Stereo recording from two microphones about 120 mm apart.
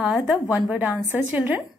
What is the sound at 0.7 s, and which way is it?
Speech, 15° right (ahead or behind).